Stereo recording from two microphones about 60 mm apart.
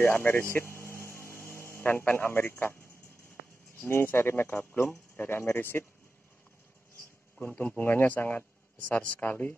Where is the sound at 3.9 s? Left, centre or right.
Left.